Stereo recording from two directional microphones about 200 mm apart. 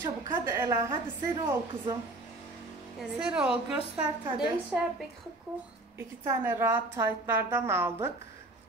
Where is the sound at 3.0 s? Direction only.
5° right (ahead or behind).